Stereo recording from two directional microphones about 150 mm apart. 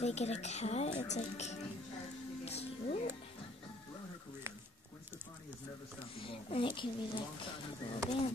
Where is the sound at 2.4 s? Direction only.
45° left (ahead or behind).